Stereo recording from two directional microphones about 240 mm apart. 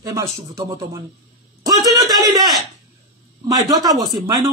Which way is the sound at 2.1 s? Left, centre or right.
Centre.